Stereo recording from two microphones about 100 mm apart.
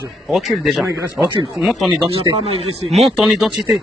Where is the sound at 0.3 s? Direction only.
Centre (ahead or behind).